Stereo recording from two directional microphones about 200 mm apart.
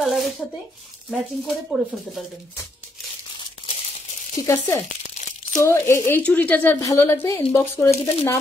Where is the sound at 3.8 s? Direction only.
35° left (ahead or behind).